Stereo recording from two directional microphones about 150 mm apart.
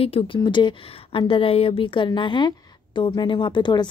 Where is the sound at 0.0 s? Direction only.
35° left (ahead or behind).